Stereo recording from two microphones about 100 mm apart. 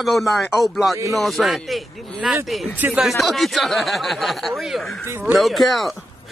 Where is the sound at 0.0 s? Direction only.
Centre (ahead or behind).